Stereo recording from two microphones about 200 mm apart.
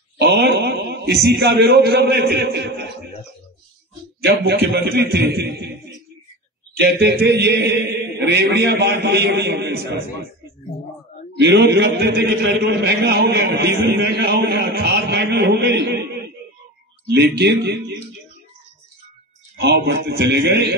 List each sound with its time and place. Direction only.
0.2 s a man's voice: 55° right (ahead or behind)
4.2 s a man's voice: 55° right (ahead or behind)
6.8 s a man's voice: 60° right (ahead or behind)
11.3 s a man's voice: 60° right (ahead or behind)
17.1 s a man's voice: 55° right (ahead or behind)
19.5 s a man's voice: 55° right (ahead or behind)